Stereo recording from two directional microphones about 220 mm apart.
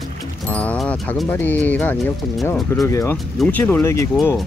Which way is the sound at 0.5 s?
5° left (ahead or behind).